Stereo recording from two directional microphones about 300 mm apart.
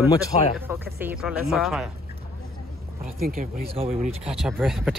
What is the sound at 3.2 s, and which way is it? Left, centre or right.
Speech, right.